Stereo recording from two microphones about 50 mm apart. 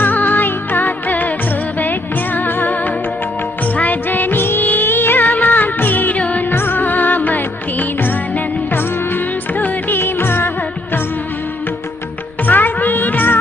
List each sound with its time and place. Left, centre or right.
0.0 s music: left
6.5 s music: left
9.6 s music: left
12.4 s music: left